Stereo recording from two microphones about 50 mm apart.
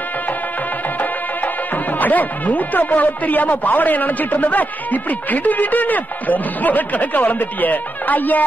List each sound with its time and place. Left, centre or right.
2.0 s speech: left